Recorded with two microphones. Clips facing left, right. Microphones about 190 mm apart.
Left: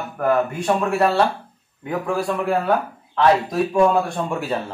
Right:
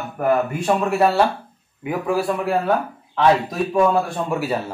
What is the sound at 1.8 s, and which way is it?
Speech, 5° right (ahead or behind).